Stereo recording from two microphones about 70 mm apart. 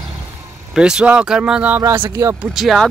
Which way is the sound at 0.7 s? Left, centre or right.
Centre.